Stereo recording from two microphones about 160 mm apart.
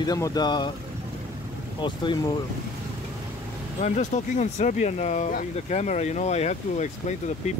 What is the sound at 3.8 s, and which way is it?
Speech, 50° left (ahead or behind).